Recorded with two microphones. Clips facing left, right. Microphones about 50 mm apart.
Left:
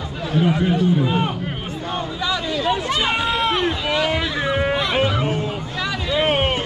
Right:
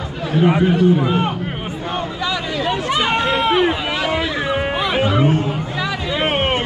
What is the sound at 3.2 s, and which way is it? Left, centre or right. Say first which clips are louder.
Run: right 4 dB; centre.